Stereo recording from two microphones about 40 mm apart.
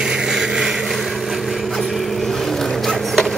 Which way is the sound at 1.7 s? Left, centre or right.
Centre.